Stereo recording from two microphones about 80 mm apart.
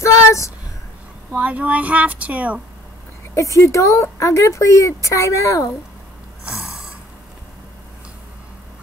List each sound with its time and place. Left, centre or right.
0.0 s a sound: left
1.3 s speech: centre
3.3 s speech: left